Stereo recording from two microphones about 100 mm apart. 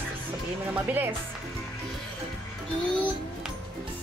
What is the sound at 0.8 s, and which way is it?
Speech, 20° right (ahead or behind).